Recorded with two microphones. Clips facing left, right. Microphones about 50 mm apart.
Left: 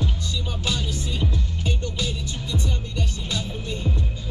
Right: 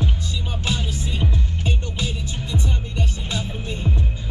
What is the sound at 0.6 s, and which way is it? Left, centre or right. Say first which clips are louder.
Music: right 2 dB; right.